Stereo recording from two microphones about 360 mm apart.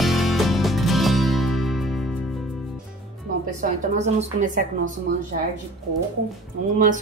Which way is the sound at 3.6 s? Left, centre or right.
Centre.